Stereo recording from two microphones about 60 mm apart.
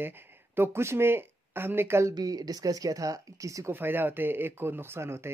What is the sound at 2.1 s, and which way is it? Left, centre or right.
Speech, right.